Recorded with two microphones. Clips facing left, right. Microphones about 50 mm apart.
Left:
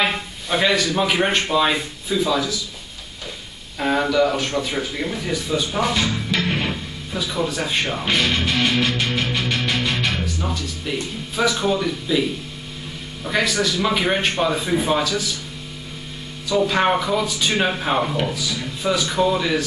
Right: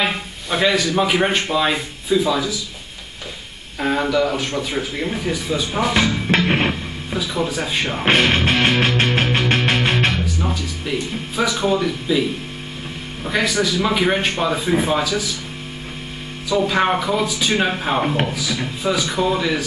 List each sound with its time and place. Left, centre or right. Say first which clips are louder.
0.0 s a man's voice: even; centre
3.8 s speech: even; centre
6.2 s music: right 5 dB; right
7.2 s speech: right 1 dB; centre
8.0 s music: right 8 dB; right
10.1 s music: right 2 dB; centre
11.6 s speech: right 2 dB; centre
13.2 s speech: right 1 dB; centre
16.4 s speech: right 1 dB; centre